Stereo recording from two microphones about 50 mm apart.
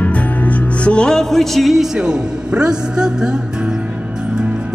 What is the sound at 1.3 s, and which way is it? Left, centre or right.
Speech, centre.